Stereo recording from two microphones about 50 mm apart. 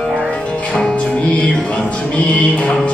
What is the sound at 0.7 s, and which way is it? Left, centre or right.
Music, centre.